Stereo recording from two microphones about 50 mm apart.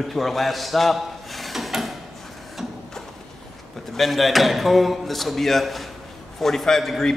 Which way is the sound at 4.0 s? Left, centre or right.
Centre.